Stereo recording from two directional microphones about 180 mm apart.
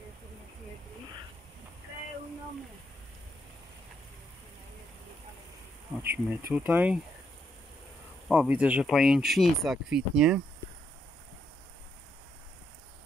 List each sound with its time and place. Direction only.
6.0 s speech: 10° right (ahead or behind)
8.3 s speech: 10° right (ahead or behind)